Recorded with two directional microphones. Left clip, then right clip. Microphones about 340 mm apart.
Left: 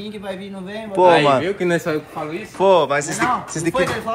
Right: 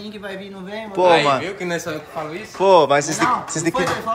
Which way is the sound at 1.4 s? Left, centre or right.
Centre.